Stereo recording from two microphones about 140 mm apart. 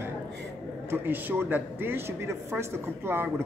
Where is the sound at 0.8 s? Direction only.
15° right (ahead or behind).